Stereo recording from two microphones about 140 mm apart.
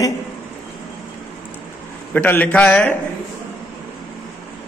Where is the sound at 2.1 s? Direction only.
15° left (ahead or behind).